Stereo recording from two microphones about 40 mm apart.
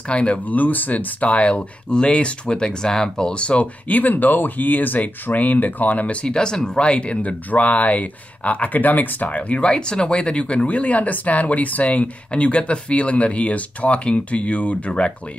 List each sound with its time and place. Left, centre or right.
0.1 s speech: left
0.5 s speech: left
1.9 s speech: left
3.4 s speech: left
4.0 s speech: left
6.2 s speech: centre